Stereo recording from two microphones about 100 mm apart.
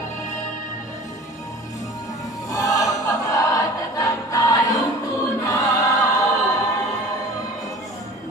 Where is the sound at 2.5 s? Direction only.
35° left (ahead or behind).